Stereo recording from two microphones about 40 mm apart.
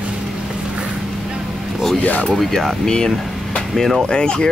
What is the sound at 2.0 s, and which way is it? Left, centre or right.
Speech, left.